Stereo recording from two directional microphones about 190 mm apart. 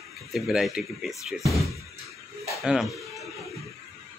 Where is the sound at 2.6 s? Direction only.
Centre (ahead or behind).